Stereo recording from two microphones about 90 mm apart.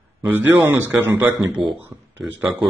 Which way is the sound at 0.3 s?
25° right (ahead or behind).